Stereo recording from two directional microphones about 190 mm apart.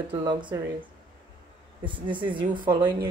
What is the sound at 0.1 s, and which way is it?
Speech, 25° right (ahead or behind).